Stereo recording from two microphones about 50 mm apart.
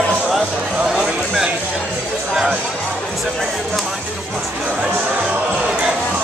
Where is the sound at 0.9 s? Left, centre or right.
Centre.